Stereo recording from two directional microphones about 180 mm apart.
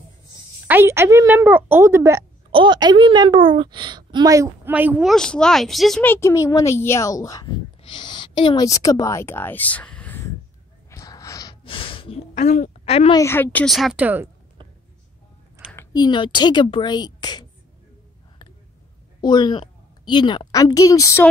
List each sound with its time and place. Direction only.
0.7 s a woman's voice: 15° right (ahead or behind)
2.5 s a woman's voice: 25° right (ahead or behind); by 5.1 s 10° right (ahead or behind)
5.1 s a woman's voice: 5° left (ahead or behind)
10.9 s gasp: 20° left (ahead or behind); by 13.1 s 35° left (ahead or behind)
13.1 s a woman's voice: 15° left (ahead or behind); by 14.3 s 10° right (ahead or behind)
15.7 s speech: 15° left (ahead or behind)
19.2 s a woman's voice: 25° left (ahead or behind)